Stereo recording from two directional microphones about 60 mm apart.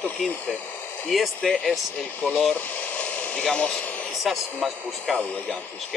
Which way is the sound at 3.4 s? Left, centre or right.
Centre.